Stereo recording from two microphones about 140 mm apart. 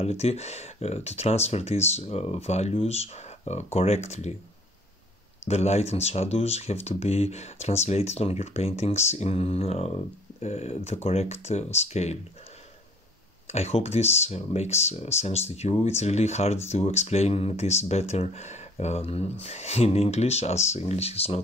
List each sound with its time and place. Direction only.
0.0 s speech: 50° left (ahead or behind)
5.4 s speech: 50° left (ahead or behind)
13.5 s speech: 50° left (ahead or behind)